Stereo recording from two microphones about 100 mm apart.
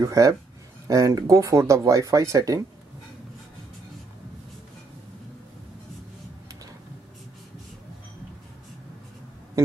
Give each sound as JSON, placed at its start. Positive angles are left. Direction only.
{"t": 0.0, "sound": "speech", "side_deg": -35}